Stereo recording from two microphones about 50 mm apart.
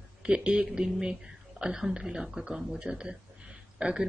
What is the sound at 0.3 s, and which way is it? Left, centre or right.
Speech, right.